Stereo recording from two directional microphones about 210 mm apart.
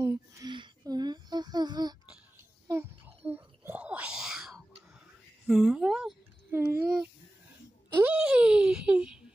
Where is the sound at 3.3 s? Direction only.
10° right (ahead or behind).